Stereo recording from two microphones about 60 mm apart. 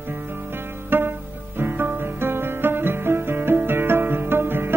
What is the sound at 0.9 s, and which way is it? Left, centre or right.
Music, right.